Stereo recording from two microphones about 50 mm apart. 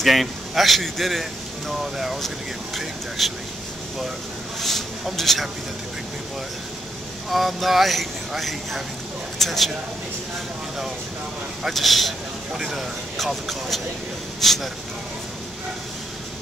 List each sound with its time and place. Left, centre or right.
0.0 s speech: centre
4.6 s speech: centre
7.2 s speech: centre
11.7 s speech: centre